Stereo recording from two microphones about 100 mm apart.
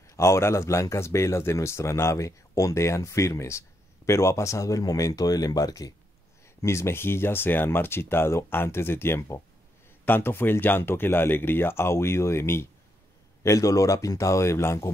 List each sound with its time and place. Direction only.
0.1 s speech: 30° left (ahead or behind)